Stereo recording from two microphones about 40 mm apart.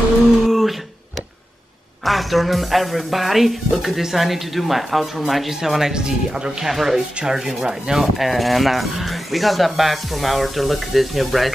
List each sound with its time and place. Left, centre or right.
0.5 s a sound: centre
2.0 s speech: centre
5.6 s speech: centre
6.7 s speech: centre
7.2 s speech: centre